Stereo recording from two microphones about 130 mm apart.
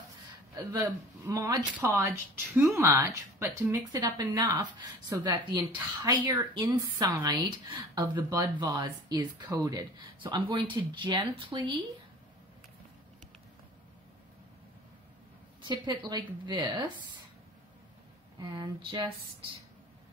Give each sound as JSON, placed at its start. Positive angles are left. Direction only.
{"t": 0.6, "sound": "speech", "side_deg": -25}
{"t": 15.6, "sound": "speech", "side_deg": -35}
{"t": 18.4, "sound": "speech", "side_deg": -35}